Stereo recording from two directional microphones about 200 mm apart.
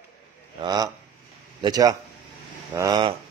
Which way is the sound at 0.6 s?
20° right (ahead or behind).